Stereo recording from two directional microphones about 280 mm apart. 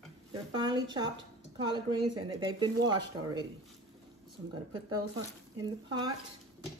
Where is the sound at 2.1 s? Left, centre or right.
Centre.